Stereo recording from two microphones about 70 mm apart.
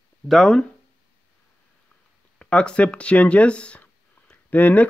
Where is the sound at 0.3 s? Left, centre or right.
Centre.